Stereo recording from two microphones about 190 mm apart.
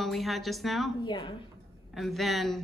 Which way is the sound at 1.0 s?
25° left (ahead or behind).